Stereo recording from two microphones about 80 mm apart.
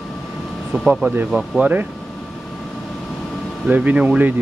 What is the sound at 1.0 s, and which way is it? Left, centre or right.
Speech, right.